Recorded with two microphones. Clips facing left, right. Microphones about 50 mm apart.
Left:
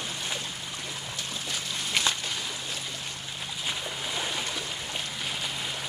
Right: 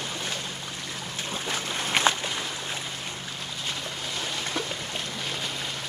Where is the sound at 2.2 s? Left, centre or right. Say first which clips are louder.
Right 3 dB; centre.